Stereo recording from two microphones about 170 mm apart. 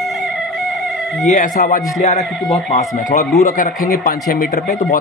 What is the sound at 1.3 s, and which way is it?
Speech, 50° left (ahead or behind).